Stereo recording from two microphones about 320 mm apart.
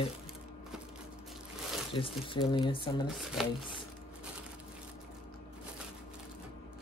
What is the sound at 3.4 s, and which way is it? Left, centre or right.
Speech, centre.